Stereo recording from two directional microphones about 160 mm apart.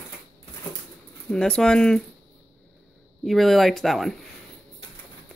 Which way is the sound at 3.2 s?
Centre (ahead or behind).